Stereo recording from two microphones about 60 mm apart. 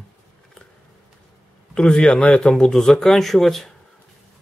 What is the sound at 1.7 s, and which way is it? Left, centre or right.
Speech, centre.